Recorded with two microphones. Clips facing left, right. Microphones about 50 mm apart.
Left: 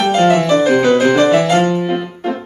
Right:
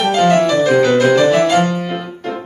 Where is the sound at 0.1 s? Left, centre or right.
Centre.